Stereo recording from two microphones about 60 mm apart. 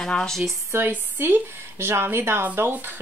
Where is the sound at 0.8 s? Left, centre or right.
Right.